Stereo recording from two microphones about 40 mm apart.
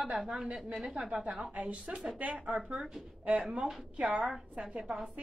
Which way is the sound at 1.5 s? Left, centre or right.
Right.